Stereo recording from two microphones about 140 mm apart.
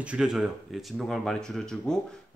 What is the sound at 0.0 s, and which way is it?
A man's voice, 5° right (ahead or behind).